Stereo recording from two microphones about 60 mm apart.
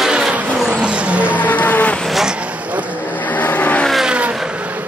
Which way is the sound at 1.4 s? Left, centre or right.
Left.